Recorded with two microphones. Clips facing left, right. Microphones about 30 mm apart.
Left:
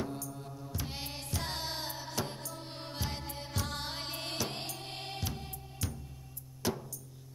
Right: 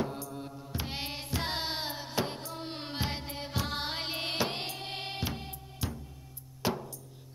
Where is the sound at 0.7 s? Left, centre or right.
Right.